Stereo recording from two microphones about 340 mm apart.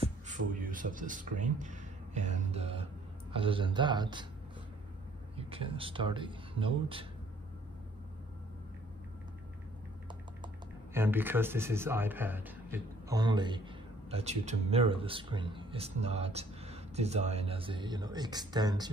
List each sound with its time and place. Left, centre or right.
0.3 s speech: right
5.3 s speech: centre
10.4 s speech: centre